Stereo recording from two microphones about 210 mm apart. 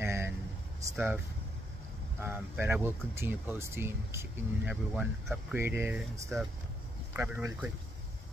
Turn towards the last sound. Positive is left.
turn(degrees=-5)  # may be behind; listen again after turning